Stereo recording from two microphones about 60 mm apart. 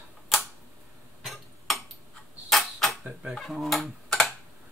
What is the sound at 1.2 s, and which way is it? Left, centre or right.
Tick-tock, centre.